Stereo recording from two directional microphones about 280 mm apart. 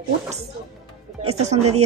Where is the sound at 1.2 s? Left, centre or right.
Right.